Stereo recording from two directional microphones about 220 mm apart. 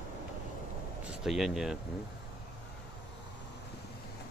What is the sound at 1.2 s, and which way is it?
Speech, centre (ahead or behind).